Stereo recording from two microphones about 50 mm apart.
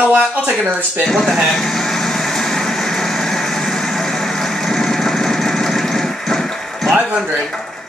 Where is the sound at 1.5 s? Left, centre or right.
Centre.